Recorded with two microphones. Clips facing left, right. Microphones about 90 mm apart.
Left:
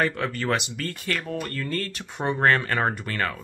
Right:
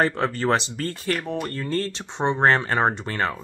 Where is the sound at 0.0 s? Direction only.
30° right (ahead or behind).